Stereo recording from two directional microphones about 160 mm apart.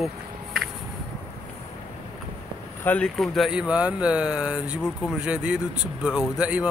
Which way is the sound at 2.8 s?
10° left (ahead or behind).